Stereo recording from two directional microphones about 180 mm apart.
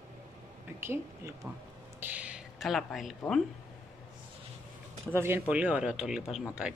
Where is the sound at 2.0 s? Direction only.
10° right (ahead or behind).